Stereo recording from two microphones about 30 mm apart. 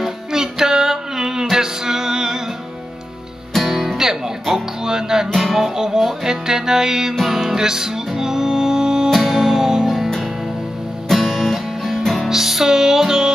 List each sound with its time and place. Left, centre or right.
0.3 s music: centre
3.6 s music: centre
5.4 s music: centre
5.8 s music: centre
9.1 s music: centre
9.8 s music: centre